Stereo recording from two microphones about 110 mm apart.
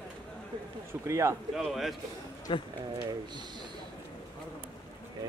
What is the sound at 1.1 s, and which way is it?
Speech, 25° right (ahead or behind).